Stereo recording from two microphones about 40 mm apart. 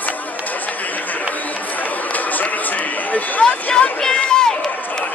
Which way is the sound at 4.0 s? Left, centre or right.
Centre.